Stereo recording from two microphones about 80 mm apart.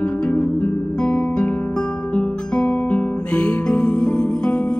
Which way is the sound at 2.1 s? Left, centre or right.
Centre.